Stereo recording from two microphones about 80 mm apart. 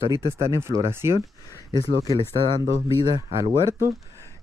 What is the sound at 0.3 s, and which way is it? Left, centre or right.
Speech, right.